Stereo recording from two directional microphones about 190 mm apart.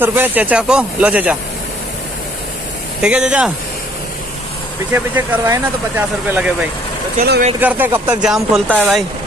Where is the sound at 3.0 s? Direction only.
5° right (ahead or behind).